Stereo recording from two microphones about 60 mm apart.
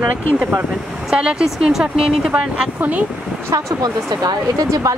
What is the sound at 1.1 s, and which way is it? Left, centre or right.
Speech, centre.